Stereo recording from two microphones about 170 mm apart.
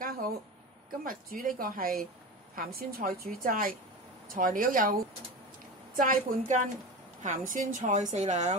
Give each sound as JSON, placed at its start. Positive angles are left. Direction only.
{"t": 1.0, "sound": "a woman's voice", "side_deg": -55}